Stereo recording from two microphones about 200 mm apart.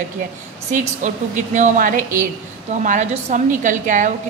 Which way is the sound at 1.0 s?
40° right (ahead or behind).